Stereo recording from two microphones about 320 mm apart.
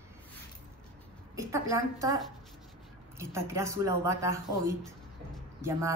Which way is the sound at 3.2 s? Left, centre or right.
Centre.